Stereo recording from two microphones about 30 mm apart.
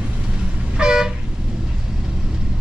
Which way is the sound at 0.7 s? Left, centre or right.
Right.